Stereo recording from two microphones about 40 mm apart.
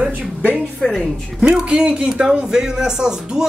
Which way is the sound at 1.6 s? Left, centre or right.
Right.